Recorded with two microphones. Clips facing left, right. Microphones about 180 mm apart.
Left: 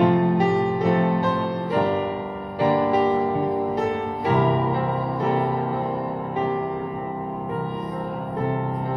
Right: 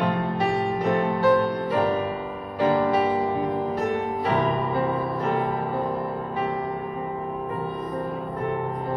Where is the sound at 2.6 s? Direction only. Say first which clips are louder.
Left 1 dB; 15° left (ahead or behind).